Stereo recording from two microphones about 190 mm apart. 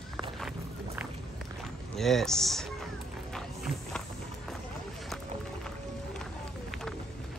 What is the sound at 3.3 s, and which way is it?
Music, centre (ahead or behind).